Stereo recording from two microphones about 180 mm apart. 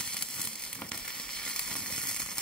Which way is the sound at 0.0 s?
5° left (ahead or behind).